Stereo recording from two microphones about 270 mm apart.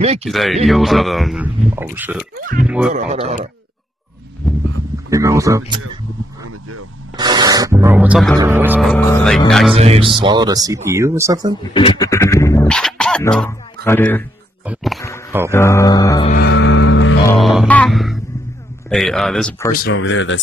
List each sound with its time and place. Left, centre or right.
0.3 s a man's voice: centre
2.9 s a man's voice: right
5.1 s speech: centre
7.2 s a man's voice: centre
9.8 s a man's voice: right
11.7 s music: centre
14.7 s a man's voice: centre
15.5 s music: centre
16.3 s music: left
17.3 s music: centre
18.9 s a man's voice: centre
19.7 s speech: left